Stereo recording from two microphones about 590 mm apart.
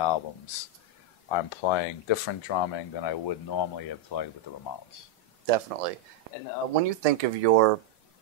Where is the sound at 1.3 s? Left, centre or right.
Left.